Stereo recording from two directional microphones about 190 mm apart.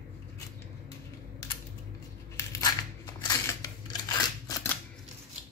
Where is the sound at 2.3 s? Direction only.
20° left (ahead or behind).